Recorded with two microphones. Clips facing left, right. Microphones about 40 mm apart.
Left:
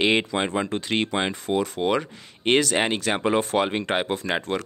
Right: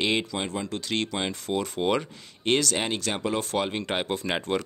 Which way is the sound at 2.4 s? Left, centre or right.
Centre.